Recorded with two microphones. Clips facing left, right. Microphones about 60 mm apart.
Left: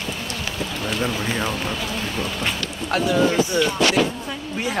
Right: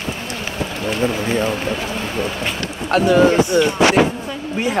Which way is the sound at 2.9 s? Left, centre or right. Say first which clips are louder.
Right 6 dB; right.